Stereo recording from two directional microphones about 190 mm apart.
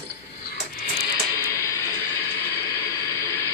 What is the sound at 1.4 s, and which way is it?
Music, 15° left (ahead or behind).